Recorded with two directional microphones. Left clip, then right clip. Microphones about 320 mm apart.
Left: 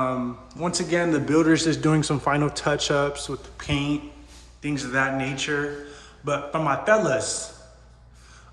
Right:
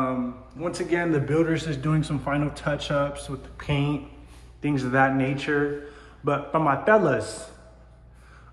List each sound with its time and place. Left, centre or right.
0.0 s a man's voice: centre